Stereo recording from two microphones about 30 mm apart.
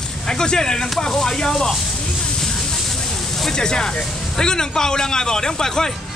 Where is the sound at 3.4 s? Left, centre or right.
Left.